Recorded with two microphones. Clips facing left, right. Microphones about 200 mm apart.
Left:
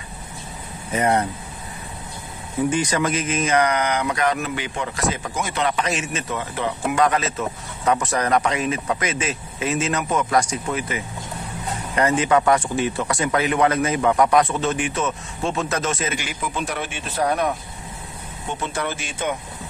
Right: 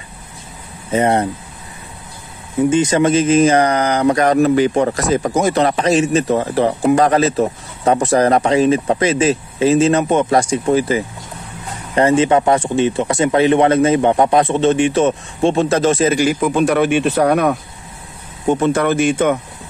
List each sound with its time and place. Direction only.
0.9 s speech: 25° right (ahead or behind)
2.6 s speech: 25° right (ahead or behind); by 17.6 s 70° right (ahead or behind)
18.5 s speech: 55° right (ahead or behind)